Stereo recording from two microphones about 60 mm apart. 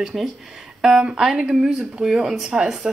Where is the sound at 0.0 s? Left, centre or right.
Centre.